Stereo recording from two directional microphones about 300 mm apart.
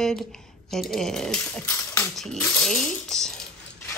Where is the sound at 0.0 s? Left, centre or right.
Centre.